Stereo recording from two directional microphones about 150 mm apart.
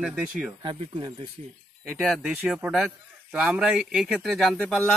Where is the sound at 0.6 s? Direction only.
30° right (ahead or behind).